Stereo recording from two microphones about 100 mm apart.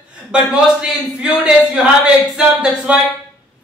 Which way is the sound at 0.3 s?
10° right (ahead or behind).